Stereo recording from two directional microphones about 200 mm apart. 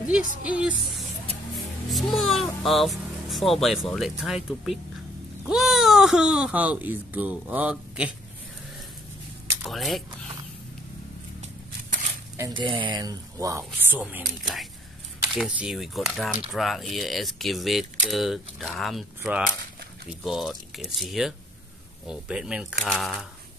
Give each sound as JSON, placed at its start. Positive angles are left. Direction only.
{"t": 0.4, "sound": "speech", "side_deg": -5}
{"t": 9.7, "sound": "speech", "side_deg": 0}
{"t": 12.4, "sound": "speech", "side_deg": -20}